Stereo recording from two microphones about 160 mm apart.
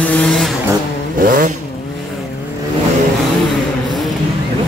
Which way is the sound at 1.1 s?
60° right (ahead or behind).